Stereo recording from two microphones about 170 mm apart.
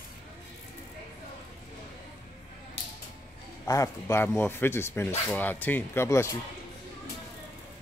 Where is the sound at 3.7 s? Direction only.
15° left (ahead or behind).